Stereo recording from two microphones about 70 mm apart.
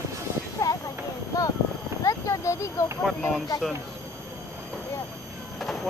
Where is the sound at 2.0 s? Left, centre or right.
Left.